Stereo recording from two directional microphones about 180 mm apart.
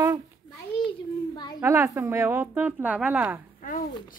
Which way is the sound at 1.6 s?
15° right (ahead or behind).